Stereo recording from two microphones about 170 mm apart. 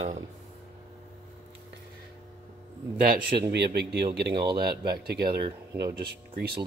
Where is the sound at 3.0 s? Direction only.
60° right (ahead or behind).